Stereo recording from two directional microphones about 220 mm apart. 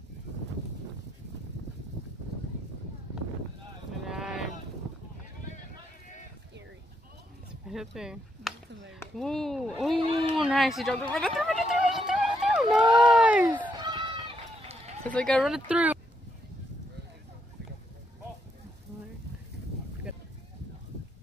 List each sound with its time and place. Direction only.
4.0 s a sound: centre (ahead or behind)
7.6 s a sound: centre (ahead or behind)
9.1 s speech: centre (ahead or behind)
9.9 s speech: 25° right (ahead or behind)
10.3 s a sound: centre (ahead or behind)
12.8 s speech: 20° right (ahead or behind)
13.2 s fowl: 5° right (ahead or behind)
13.7 s run: 20° right (ahead or behind)
15.0 s speech: 5° left (ahead or behind)